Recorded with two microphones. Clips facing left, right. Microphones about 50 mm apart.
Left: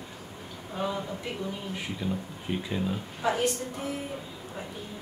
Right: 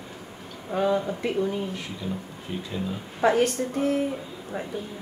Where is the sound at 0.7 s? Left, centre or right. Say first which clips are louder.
Right 7 dB; right.